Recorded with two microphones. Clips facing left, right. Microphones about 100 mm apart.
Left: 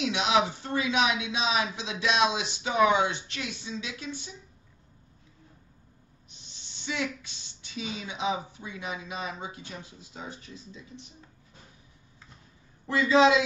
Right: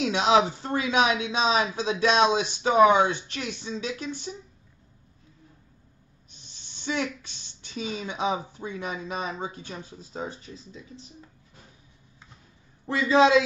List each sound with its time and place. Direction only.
0.0 s speech: 40° right (ahead or behind)
6.5 s a sound: 45° right (ahead or behind)
7.7 s speech: 45° right (ahead or behind)
12.8 s speech: 30° right (ahead or behind)